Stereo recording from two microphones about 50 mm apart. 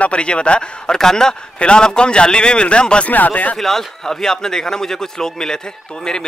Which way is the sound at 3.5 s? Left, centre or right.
Centre.